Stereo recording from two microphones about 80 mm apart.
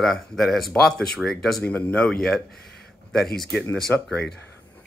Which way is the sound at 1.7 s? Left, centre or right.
Centre.